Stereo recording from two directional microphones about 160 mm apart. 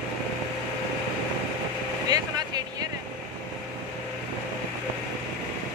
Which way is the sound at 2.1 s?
25° right (ahead or behind).